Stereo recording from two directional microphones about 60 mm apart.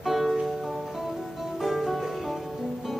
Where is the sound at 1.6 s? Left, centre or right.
Centre.